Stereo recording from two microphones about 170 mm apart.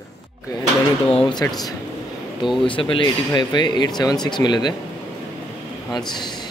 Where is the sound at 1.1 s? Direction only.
30° left (ahead or behind).